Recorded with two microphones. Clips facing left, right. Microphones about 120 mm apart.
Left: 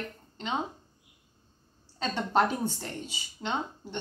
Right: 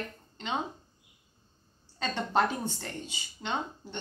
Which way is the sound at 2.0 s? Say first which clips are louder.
Left 2 dB; 5° left (ahead or behind).